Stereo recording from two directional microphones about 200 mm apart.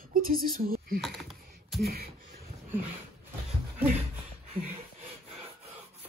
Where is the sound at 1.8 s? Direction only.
50° right (ahead or behind).